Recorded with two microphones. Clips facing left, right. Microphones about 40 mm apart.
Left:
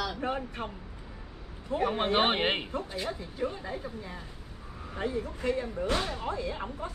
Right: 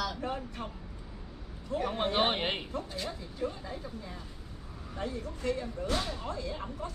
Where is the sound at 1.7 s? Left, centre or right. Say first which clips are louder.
Left 3 dB; left.